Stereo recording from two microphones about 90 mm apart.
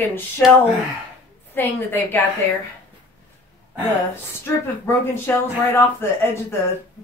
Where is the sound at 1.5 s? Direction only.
20° left (ahead or behind).